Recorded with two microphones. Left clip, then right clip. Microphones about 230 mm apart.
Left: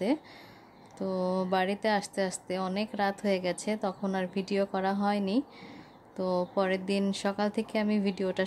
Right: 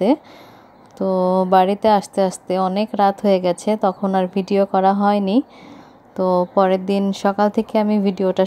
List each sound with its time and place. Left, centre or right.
0.9 s a woman's voice: right